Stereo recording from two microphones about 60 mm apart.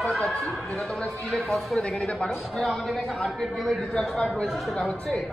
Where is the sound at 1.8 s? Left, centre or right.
Centre.